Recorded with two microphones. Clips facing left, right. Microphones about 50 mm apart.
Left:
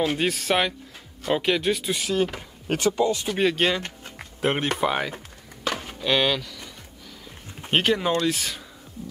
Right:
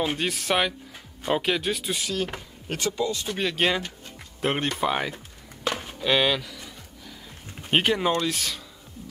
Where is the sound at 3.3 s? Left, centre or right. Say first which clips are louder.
Left 5 dB; centre.